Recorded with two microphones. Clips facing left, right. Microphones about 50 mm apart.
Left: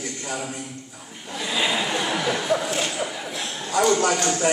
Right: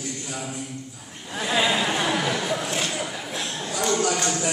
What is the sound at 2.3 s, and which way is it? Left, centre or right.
Speech, centre.